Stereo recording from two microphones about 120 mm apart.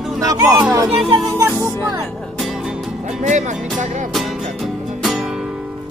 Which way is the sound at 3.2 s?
85° right.